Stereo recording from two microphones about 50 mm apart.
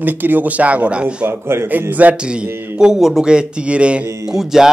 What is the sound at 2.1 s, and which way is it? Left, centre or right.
Speech, centre.